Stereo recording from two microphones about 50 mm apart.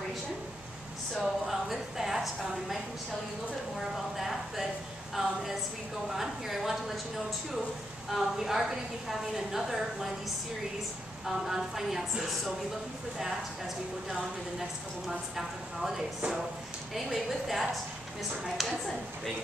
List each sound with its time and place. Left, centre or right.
1.2 s a sound: centre
3.9 s a sound: centre
5.1 s a woman's voice: centre
8.1 s a woman's voice: centre
11.2 s a woman's voice: centre
15.0 s a woman's voice: centre